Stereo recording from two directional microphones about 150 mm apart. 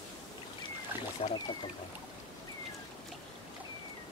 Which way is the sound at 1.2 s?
45° left (ahead or behind).